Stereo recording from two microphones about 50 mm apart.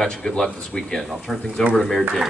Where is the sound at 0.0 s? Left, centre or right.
Centre.